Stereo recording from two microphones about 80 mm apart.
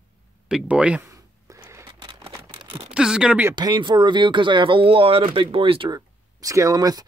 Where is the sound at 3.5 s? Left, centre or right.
Right.